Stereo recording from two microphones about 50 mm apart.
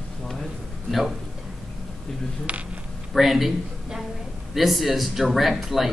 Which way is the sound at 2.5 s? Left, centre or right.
Right.